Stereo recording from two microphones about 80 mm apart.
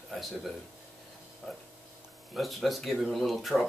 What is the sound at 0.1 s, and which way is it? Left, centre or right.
Speech, centre.